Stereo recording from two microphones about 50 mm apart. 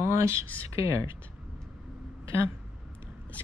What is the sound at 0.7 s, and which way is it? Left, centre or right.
Speech, right.